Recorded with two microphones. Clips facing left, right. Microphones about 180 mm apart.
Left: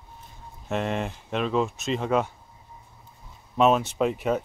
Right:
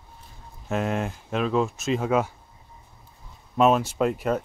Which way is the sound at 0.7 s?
Centre (ahead or behind).